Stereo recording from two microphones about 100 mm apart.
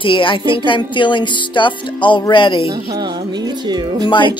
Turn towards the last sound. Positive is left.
turn(degrees=55)  # may be behind; listen again after turning